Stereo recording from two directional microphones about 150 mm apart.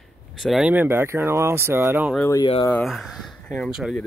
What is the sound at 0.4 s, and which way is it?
Speech, centre (ahead or behind).